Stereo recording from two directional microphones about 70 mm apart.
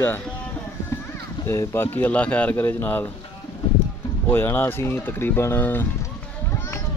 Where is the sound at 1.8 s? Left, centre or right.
Left.